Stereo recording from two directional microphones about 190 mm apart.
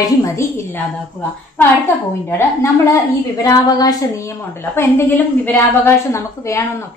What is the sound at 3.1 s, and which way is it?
A woman's voice, 20° left (ahead or behind).